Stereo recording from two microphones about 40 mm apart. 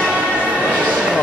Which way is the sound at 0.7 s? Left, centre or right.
Right.